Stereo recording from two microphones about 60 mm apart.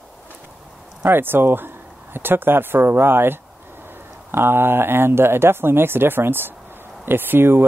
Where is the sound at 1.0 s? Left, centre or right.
Right.